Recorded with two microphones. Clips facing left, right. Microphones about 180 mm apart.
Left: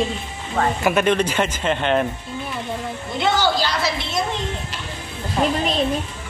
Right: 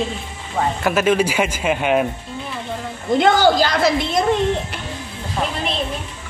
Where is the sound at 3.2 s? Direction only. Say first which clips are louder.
Right 4 dB; 50° right (ahead or behind).